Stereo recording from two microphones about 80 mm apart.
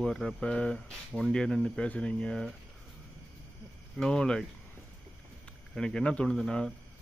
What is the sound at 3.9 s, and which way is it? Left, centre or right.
Speech, centre.